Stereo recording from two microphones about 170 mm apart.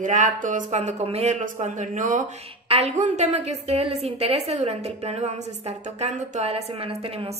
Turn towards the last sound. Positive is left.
turn(degrees=-35)  # may be behind; listen again after turning